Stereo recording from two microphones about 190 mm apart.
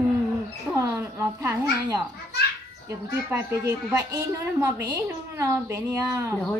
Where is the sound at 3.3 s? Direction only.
15° right (ahead or behind).